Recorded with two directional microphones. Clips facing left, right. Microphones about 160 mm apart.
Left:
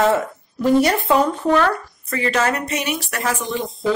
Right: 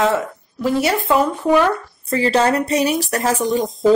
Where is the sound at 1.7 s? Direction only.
30° right (ahead or behind).